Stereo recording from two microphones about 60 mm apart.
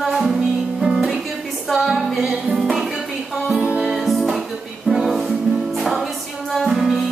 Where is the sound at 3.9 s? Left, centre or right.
Centre.